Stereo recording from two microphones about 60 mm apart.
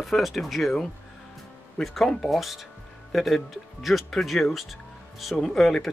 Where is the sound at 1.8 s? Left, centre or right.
Centre.